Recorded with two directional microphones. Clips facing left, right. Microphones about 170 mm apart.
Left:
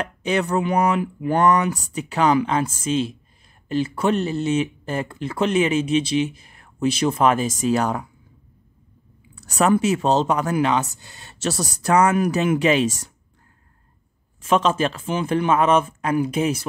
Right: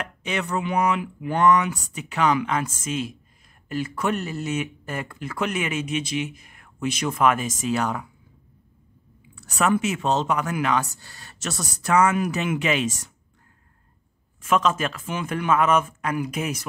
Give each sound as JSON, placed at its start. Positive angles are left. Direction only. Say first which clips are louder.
{"t": 0.0, "sound": "speech", "louder": "left 6 dB", "side_deg": 35}
{"t": 9.3, "sound": "speech", "louder": "left 4 dB", "side_deg": 40}
{"t": 14.4, "sound": "a man's voice", "louder": "left 3 dB", "side_deg": 30}